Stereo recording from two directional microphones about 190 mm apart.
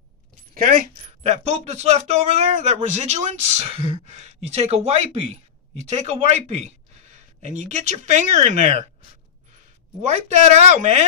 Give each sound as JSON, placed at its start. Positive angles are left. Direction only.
{"t": 0.6, "sound": "speech", "side_deg": -45}
{"t": 1.2, "sound": "speech", "side_deg": -35}
{"t": 10.0, "sound": "speech", "side_deg": -35}